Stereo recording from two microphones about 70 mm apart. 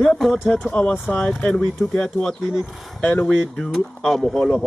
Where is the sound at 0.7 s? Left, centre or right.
Centre.